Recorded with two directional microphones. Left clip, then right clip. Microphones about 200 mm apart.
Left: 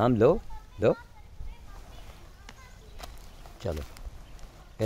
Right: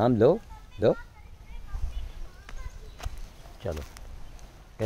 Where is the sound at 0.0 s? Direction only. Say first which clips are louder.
Right 1 dB; centre (ahead or behind).